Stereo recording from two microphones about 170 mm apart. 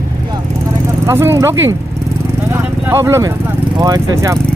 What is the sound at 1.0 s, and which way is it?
Speech, 15° right (ahead or behind).